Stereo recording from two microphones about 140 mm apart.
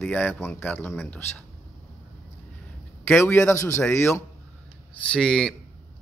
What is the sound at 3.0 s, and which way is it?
Speech, 15° left (ahead or behind).